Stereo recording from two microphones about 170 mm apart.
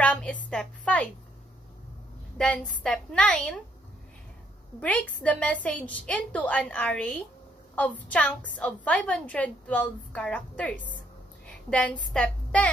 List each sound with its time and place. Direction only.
0.0 s a sound: 10° left (ahead or behind)
2.3 s a woman's voice: 5° left (ahead or behind)
4.7 s a woman's voice: 10° left (ahead or behind)